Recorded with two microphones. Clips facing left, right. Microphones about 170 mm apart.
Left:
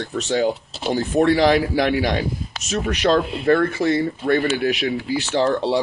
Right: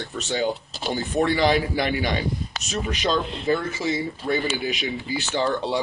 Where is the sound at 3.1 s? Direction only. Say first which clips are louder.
Left 6 dB; 60° left (ahead or behind).